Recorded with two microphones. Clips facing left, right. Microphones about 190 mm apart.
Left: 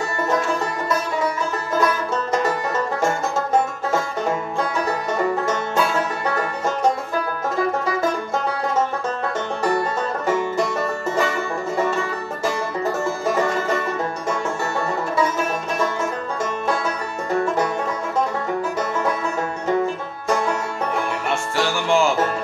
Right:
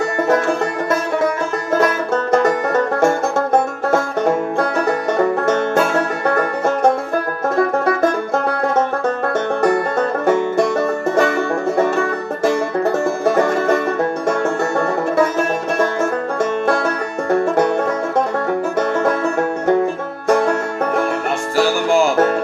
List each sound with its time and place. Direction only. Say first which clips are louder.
2.3 s music: right 7 dB; 60° right (ahead or behind)
8.5 s music: right 3 dB; 60° right (ahead or behind)
18.8 s music: right 6 dB; 55° right (ahead or behind)
20.2 s music: right 6 dB; 55° right (ahead or behind)
21.5 s music: right 5 dB; 40° right (ahead or behind)